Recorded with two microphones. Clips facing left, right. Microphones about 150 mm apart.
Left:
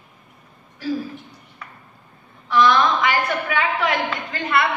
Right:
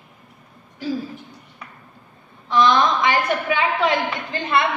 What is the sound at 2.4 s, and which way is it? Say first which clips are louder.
A woman's voice: even; 20° right (ahead or behind).